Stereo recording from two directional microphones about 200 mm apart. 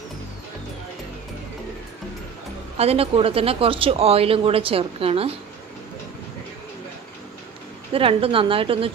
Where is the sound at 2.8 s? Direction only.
30° right (ahead or behind).